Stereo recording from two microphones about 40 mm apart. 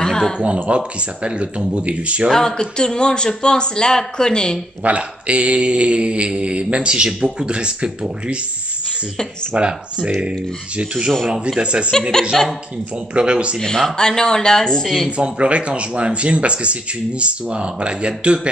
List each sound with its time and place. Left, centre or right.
0.0 s a sound: centre
0.7 s mantra: right
2.3 s speech: centre
4.8 s mantra: right
9.6 s mantra: right
12.3 s a woman's voice: centre
13.1 s mantra: right
13.6 s speech: centre
13.9 s speech: centre
15.0 s mantra: right